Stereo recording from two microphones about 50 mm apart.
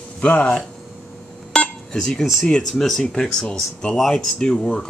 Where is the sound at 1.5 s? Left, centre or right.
Centre.